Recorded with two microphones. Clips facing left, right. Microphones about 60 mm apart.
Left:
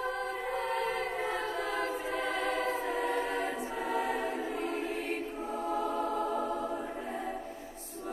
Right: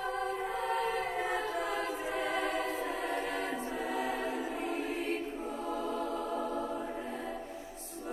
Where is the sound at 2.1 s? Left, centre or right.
Centre.